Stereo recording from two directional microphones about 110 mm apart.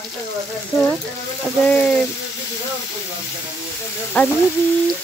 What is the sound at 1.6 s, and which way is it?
Speech, 15° left (ahead or behind).